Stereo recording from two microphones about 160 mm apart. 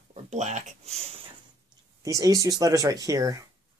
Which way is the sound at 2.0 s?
20° right (ahead or behind).